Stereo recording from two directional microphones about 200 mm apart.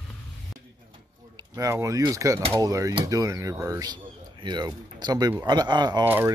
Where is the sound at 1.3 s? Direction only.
20° right (ahead or behind).